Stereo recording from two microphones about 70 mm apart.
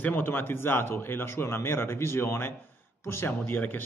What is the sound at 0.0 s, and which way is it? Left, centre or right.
A man's voice, left.